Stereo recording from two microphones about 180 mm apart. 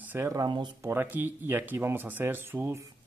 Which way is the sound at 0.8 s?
10° right (ahead or behind).